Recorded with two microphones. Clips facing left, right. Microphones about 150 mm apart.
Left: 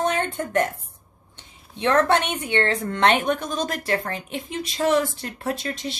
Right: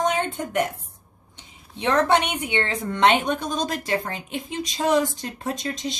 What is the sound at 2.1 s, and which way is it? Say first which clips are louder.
Speech: even; 15° right (ahead or behind).